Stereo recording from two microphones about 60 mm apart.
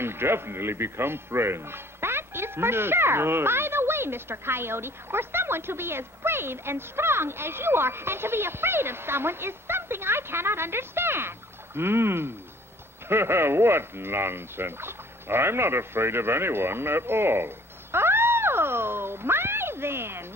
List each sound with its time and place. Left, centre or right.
0.0 s speech: right